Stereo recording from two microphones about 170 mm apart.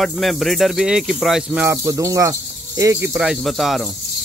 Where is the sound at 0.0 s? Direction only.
Centre (ahead or behind).